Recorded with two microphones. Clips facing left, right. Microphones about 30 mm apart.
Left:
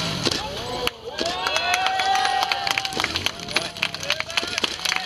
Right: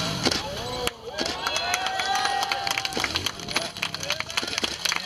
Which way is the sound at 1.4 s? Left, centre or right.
Centre.